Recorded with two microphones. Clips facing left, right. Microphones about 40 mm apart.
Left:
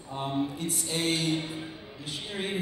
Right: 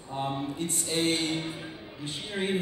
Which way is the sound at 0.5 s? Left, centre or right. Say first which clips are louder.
Right 2 dB; right.